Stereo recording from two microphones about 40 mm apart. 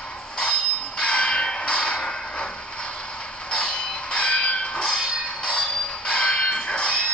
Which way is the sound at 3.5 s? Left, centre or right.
Left.